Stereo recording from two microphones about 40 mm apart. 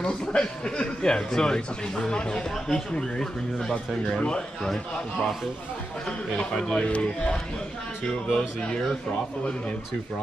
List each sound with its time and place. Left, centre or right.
0.0 s speech: left
3.7 s speech: left
6.0 s speech: centre
6.7 s speech: left